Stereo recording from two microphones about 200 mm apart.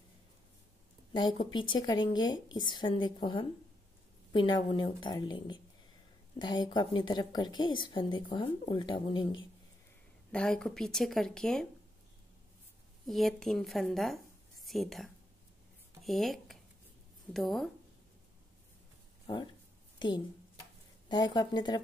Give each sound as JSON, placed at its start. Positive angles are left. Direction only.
{"t": 1.1, "sound": "a woman's voice", "side_deg": 25}
{"t": 10.3, "sound": "speech", "side_deg": 5}
{"t": 13.0, "sound": "a woman's voice", "side_deg": 0}
{"t": 19.2, "sound": "a woman's voice", "side_deg": 25}